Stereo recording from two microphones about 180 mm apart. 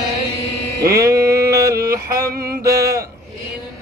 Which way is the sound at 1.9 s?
15° right (ahead or behind).